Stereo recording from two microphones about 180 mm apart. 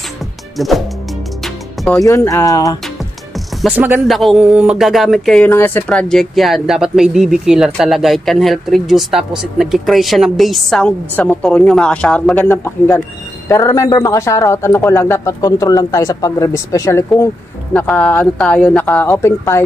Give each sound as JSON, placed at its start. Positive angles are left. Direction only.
{"t": 0.6, "sound": "speech", "side_deg": 0}
{"t": 1.4, "sound": "music", "side_deg": 0}
{"t": 2.0, "sound": "speech", "side_deg": 15}
{"t": 3.7, "sound": "speech", "side_deg": -10}
{"t": 4.1, "sound": "speech", "side_deg": 0}